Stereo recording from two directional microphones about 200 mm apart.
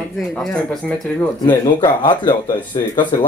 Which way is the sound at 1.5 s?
20° left (ahead or behind).